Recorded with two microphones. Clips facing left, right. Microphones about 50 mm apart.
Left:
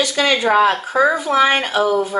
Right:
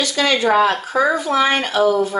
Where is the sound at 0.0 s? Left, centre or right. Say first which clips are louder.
Left 1 dB; centre.